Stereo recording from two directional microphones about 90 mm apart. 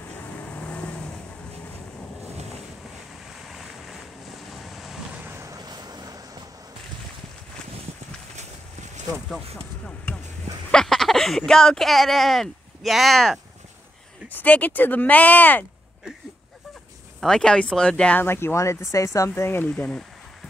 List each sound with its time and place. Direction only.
0.2 s vehicle: 20° left (ahead or behind)
3.4 s vehicle: centre (ahead or behind)
5.2 s vehicle: 30° right (ahead or behind)
5.7 s vehicle: 50° right (ahead or behind)
10.1 s a sound: 15° left (ahead or behind)
10.7 s speech: 5° left (ahead or behind)
14.3 s speech: 20° left (ahead or behind)
17.2 s speech: 5° left (ahead or behind)
18.2 s speech: 25° left (ahead or behind)
19.7 s speech: 15° left (ahead or behind)